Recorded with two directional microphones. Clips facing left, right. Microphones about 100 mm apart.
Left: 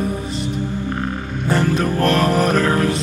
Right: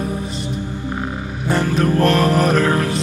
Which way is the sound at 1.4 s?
Centre (ahead or behind).